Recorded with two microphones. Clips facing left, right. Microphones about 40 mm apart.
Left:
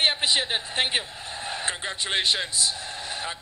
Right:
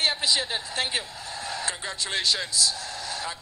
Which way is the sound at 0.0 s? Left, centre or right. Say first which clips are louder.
Left 2 dB; left.